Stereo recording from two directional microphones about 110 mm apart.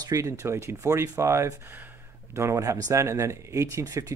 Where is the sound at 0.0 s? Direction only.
30° right (ahead or behind).